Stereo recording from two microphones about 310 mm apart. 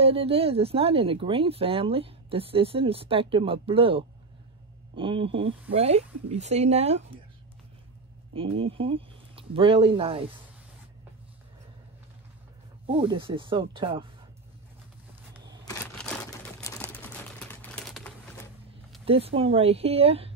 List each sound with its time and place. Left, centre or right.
0.0 s speech: centre
8.3 s speech: centre
12.8 s speech: centre
15.6 s a sound: centre
16.6 s typing: centre
19.0 s speech: centre